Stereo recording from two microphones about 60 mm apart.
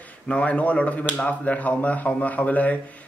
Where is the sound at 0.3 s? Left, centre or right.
Left.